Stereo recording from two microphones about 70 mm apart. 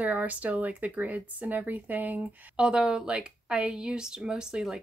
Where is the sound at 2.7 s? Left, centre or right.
Centre.